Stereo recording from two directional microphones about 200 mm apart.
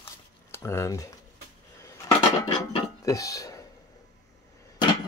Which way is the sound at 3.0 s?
15° left (ahead or behind).